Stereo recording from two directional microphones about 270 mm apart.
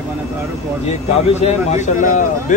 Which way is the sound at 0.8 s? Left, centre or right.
Left.